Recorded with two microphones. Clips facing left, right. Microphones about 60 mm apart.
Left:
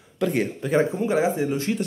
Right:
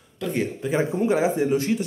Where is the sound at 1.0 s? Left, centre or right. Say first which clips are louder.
Right 1 dB; right.